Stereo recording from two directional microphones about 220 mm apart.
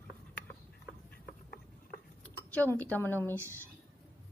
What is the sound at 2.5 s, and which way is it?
Speech, 10° left (ahead or behind).